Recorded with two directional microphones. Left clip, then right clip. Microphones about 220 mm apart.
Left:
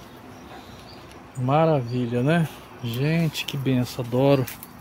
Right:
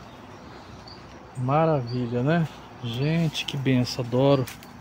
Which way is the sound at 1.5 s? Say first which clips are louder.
Left 2 dB; 20° left (ahead or behind).